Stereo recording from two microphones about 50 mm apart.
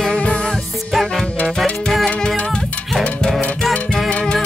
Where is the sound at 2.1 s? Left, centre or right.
Left.